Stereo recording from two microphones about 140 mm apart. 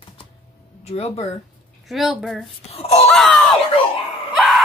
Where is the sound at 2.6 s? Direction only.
45° left (ahead or behind).